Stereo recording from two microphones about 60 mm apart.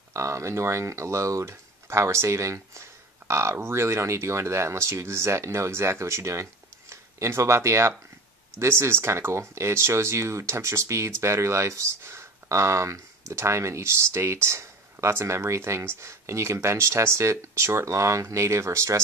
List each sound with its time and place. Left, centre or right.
0.1 s speech: right